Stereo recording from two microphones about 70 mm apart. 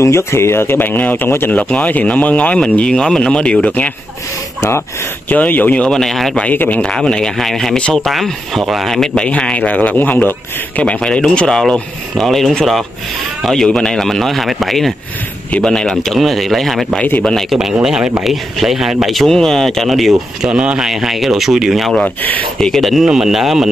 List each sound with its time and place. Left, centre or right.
0.0 s speech: left; by 3.5 s centre
5.3 s speech: left; by 6.3 s centre
6.3 s speech: left
6.8 s speech: centre; by 10.3 s left
10.8 s speech: centre
19.0 s speech: centre
20.5 s speech: centre